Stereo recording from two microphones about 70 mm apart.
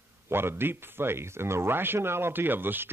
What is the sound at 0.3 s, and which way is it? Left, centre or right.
A man's voice, right.